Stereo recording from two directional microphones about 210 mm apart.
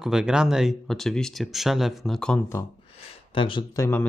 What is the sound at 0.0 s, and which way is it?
Speech, 5° right (ahead or behind).